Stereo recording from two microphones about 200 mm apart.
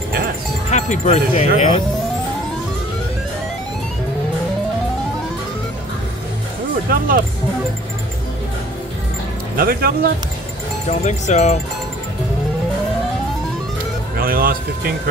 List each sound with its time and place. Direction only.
0.7 s speech: 35° left (ahead or behind)
6.9 s speech: 45° right (ahead or behind)
9.6 s speech: 50° right (ahead or behind)
10.9 s speech: 35° left (ahead or behind)
14.1 s speech: 45° right (ahead or behind)